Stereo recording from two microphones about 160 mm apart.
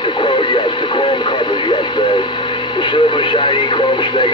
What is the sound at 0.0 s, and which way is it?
Radio, 30° left (ahead or behind).